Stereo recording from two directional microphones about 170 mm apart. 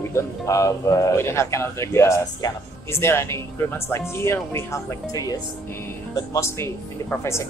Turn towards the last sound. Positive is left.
turn(degrees=15)  # may be behind; listen again after turning